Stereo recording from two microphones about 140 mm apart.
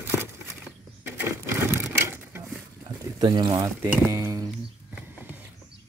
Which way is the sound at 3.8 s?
20° right (ahead or behind).